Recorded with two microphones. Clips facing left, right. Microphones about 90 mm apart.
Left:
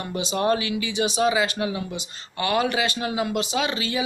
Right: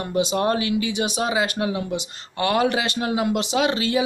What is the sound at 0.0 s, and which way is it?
Speech, 55° right (ahead or behind).